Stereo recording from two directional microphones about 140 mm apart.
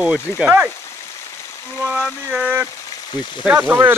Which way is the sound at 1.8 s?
5° right (ahead or behind).